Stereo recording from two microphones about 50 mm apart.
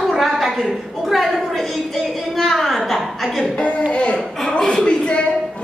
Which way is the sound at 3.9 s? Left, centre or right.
Left.